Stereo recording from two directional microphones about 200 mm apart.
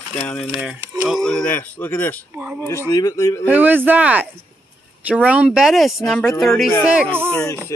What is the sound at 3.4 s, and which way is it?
Speech, 10° right (ahead or behind).